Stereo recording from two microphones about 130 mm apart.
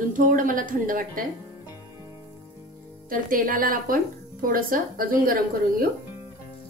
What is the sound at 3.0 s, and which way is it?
Speech, 90° right.